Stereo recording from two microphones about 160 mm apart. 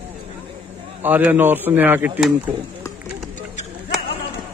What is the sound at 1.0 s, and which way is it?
A man's voice, 10° right (ahead or behind).